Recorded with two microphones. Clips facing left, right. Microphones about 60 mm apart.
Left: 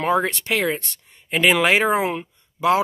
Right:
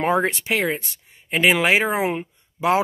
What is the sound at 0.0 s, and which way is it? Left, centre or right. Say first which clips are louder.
Speech: even; right.